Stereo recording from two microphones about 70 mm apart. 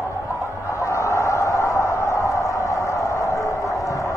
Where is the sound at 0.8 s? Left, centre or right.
Left.